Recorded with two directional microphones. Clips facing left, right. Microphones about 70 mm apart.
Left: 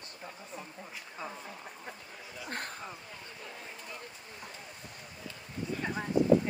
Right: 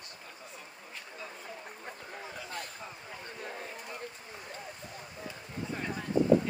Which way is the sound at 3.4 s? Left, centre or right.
Right.